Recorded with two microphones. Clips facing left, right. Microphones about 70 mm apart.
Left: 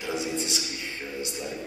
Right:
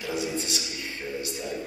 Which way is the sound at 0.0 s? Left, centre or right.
Left.